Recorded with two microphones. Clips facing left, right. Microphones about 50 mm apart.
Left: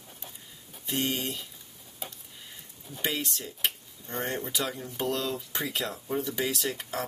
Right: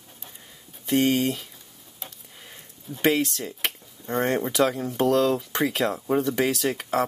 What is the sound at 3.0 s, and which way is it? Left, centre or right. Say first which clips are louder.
Speech: right 10 dB; right.